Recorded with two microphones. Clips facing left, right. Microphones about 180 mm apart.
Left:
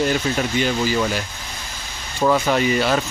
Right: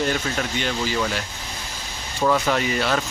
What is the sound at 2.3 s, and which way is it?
Speech, 5° left (ahead or behind).